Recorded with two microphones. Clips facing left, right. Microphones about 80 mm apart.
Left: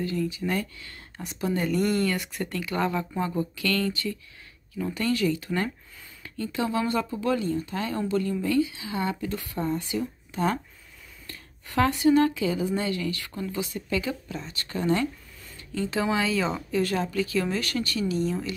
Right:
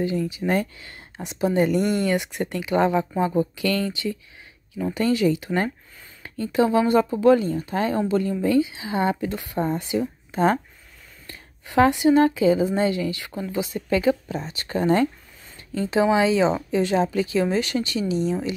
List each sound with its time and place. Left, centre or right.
0.2 s speech: right
11.2 s speech: right
13.7 s speech: right
15.9 s speech: right